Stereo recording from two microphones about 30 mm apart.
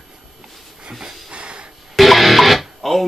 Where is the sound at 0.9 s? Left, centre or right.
Right.